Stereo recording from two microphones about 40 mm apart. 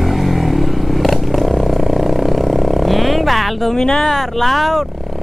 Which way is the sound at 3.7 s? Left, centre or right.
Centre.